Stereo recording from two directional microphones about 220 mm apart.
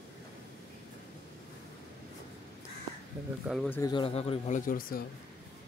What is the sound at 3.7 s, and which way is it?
Speech, 20° left (ahead or behind).